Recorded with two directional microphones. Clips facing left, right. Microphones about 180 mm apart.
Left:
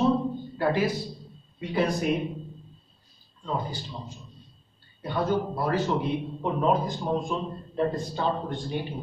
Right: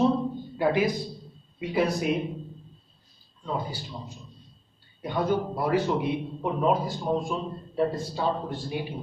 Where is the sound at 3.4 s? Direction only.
10° right (ahead or behind).